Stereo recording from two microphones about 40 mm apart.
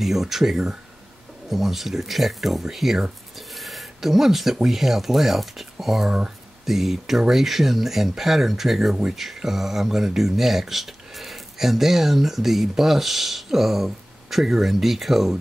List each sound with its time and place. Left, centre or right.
0.0 s speech: centre
6.0 s speech: right
6.6 s speech: centre